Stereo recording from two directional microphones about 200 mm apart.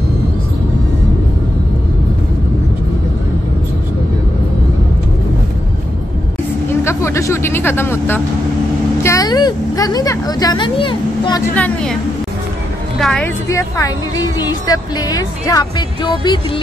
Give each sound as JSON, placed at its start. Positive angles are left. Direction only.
{"t": 6.7, "sound": "vehicle", "side_deg": 15}
{"t": 9.0, "sound": "speech", "side_deg": 15}
{"t": 11.5, "sound": "a woman's voice", "side_deg": 5}
{"t": 13.0, "sound": "a woman's voice", "side_deg": 5}